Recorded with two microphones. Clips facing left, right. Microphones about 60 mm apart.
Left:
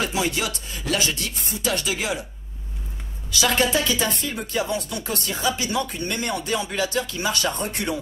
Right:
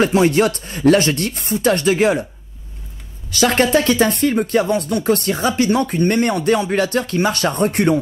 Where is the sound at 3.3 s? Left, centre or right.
Right.